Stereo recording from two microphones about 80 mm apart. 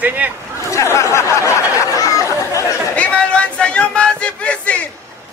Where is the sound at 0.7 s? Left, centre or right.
Left.